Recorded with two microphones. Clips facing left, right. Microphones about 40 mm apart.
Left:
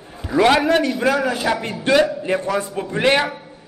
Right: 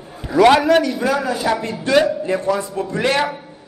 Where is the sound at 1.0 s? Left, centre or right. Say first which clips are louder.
Even; left.